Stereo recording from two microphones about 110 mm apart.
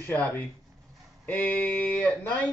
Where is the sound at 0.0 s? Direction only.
10° left (ahead or behind).